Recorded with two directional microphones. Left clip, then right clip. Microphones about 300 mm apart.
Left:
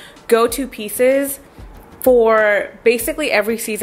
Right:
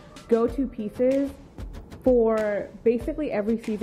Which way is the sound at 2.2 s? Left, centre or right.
Centre.